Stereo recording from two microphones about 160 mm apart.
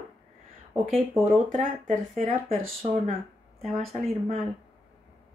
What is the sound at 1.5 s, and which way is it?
Speech, 50° right (ahead or behind).